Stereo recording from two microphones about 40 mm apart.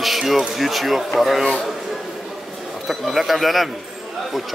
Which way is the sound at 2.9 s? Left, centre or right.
Centre.